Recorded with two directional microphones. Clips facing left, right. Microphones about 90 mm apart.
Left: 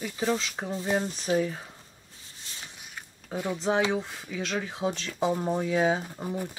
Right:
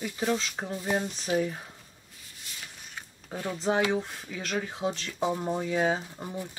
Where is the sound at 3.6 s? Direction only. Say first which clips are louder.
Even; centre (ahead or behind).